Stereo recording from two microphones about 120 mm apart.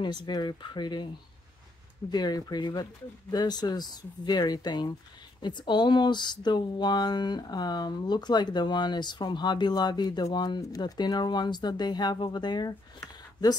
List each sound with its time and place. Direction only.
0.0 s speech: 40° left (ahead or behind)
2.0 s speech: 35° left (ahead or behind)